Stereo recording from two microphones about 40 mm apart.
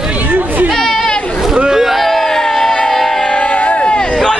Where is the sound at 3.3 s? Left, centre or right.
Left.